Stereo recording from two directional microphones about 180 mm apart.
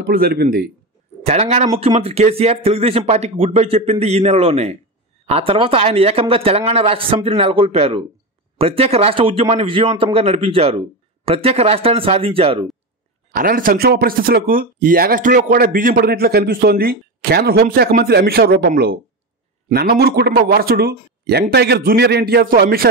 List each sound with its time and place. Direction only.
0.0 s speech: 55° right (ahead or behind)
1.2 s speech: 35° right (ahead or behind)
13.3 s speech: 50° right (ahead or behind)